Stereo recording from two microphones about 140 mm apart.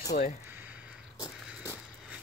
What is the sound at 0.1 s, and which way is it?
Speech, 90° left.